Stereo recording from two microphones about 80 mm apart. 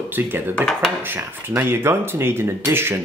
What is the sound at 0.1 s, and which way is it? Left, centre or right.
Speech, right.